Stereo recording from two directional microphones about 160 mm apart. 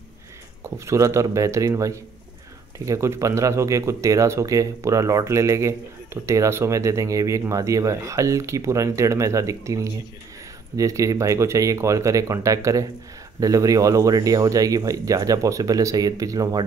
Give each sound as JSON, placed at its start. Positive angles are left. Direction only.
{"t": 0.7, "sound": "speech", "side_deg": -15}